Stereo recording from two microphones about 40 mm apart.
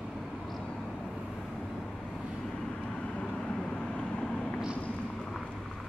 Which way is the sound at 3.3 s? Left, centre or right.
Centre.